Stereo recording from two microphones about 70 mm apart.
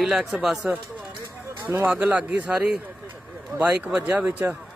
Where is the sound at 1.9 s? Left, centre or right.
Right.